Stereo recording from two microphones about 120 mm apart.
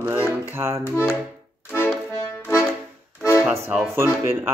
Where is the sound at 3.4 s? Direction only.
15° right (ahead or behind).